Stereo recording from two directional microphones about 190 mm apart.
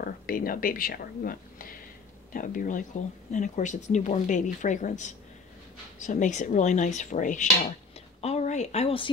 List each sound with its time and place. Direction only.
0.0 s speech: 50° left (ahead or behind); by 9.1 s 30° left (ahead or behind)